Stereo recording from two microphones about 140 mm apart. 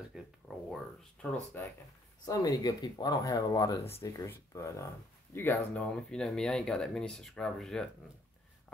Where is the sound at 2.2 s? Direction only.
25° left (ahead or behind).